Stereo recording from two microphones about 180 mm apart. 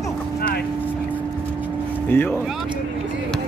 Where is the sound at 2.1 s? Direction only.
15° left (ahead or behind).